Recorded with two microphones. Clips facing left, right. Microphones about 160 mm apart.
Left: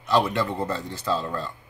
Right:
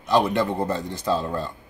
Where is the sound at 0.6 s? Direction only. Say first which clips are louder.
Right 3 dB; 15° right (ahead or behind).